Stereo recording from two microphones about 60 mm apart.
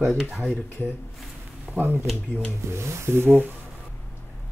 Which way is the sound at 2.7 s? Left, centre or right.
Right.